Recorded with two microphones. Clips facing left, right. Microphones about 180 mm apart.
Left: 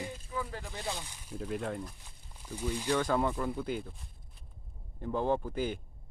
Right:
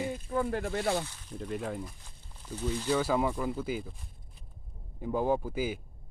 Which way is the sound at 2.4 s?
10° left (ahead or behind).